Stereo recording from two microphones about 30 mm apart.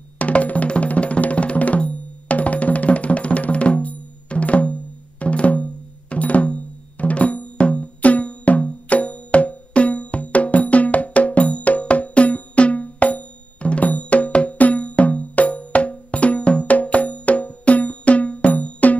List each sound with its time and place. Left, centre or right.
0.2 s music: left